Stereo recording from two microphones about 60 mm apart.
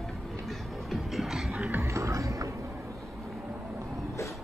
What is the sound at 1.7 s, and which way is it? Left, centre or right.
Music, right.